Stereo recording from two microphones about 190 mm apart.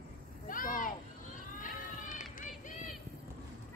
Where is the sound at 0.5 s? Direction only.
45° left (ahead or behind).